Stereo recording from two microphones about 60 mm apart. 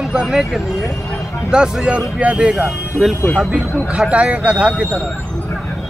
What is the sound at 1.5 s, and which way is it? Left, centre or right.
Speech, centre.